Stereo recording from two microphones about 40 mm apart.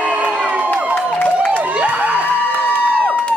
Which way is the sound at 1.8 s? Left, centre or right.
Right.